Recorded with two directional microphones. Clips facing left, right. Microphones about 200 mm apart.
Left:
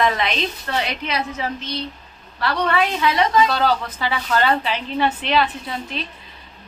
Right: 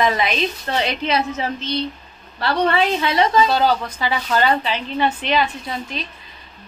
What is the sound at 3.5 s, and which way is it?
A woman's voice, centre (ahead or behind).